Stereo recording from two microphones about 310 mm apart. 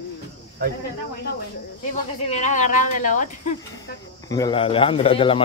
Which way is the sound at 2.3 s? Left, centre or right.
Left.